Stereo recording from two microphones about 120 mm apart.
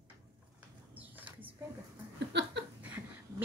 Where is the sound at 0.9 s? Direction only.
15° right (ahead or behind).